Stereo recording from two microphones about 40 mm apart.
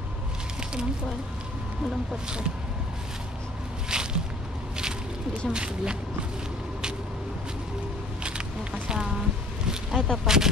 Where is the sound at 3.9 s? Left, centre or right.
Centre.